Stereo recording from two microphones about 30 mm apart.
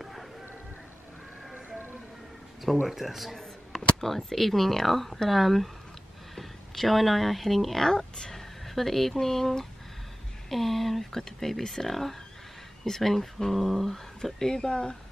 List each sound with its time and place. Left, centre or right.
0.0 s a sound: centre
2.9 s speech: centre
4.0 s speech: centre
7.9 s speech: centre
8.6 s speech: centre; by 15.0 s left